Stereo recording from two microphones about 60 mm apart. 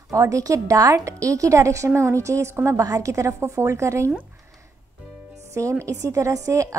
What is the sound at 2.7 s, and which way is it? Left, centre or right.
Speech, right.